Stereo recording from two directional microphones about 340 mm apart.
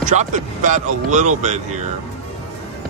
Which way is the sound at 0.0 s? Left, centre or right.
Right.